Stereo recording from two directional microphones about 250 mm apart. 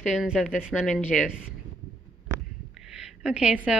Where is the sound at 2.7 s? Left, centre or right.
Centre.